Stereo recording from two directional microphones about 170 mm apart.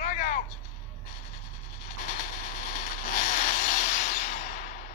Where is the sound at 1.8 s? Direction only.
50° left (ahead or behind).